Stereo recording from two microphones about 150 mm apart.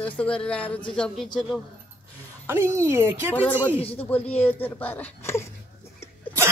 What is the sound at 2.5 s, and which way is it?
Speech, 15° right (ahead or behind).